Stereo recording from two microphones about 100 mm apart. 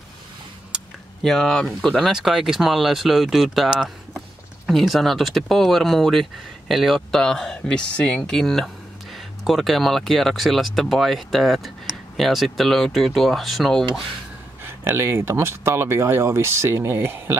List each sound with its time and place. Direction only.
1.2 s speech: 5° left (ahead or behind)
14.6 s speech: 25° right (ahead or behind)